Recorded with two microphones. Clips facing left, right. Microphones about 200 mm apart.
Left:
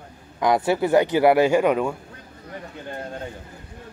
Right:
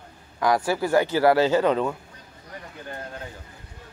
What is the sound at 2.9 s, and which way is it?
Speech, 25° left (ahead or behind).